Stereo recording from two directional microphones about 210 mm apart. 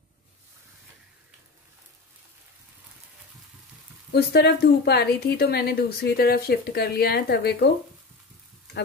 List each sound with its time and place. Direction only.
4.1 s a woman's voice: 50° left (ahead or behind)